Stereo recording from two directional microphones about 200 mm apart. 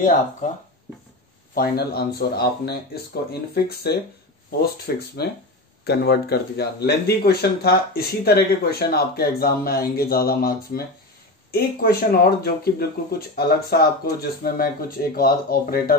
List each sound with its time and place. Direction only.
1.5 s speech: 50° left (ahead or behind)